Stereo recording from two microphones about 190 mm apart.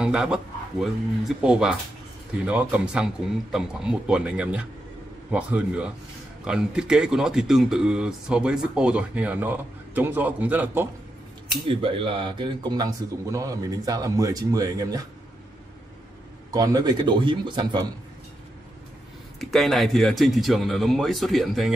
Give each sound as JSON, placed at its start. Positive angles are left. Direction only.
{"t": 0.0, "sound": "a man's voice", "side_deg": -5}
{"t": 11.6, "sound": "speech", "side_deg": -30}
{"t": 16.5, "sound": "speech", "side_deg": -20}
{"t": 19.5, "sound": "speech", "side_deg": 0}